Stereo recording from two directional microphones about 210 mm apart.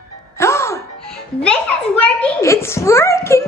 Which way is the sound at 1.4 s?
5° left (ahead or behind).